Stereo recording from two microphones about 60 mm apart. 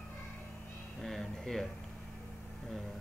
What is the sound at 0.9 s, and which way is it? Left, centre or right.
Speech, centre.